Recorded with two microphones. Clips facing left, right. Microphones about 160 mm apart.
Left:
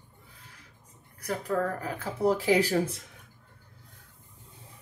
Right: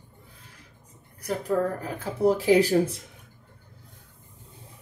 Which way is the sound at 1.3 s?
20° right (ahead or behind).